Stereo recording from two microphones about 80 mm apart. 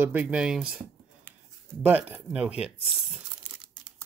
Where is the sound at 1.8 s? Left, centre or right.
Right.